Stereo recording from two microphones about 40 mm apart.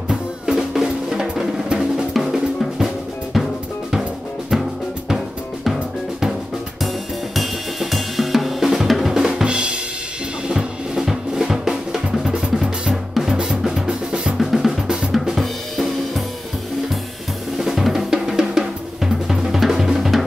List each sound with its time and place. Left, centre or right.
0.5 s music: centre
3.3 s drum: centre
7.3 s drum kit: centre
9.1 s drum kit: centre
10.5 s drum: centre
15.1 s drum kit: centre
17.6 s drum: centre